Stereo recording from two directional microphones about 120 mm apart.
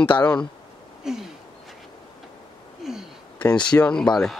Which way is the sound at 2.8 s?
Centre (ahead or behind).